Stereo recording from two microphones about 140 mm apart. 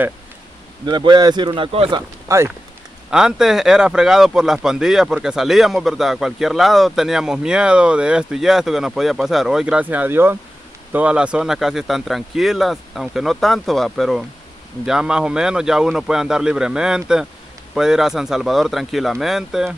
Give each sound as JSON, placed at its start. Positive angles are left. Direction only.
{"t": 0.8, "sound": "speech", "side_deg": -30}
{"t": 2.0, "sound": "speech", "side_deg": -20}
{"t": 3.1, "sound": "speech", "side_deg": -5}